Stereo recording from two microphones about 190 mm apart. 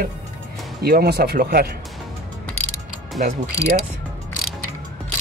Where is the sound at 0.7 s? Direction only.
55° right (ahead or behind).